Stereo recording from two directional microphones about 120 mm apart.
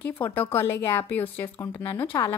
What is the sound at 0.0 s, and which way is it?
A woman's voice, 15° left (ahead or behind).